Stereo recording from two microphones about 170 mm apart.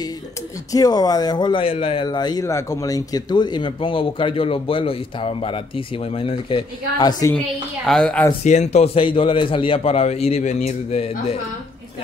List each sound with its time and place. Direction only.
0.7 s speech: 20° left (ahead or behind)
7.3 s a woman's voice: 5° left (ahead or behind)
8.5 s a man's voice: 40° left (ahead or behind)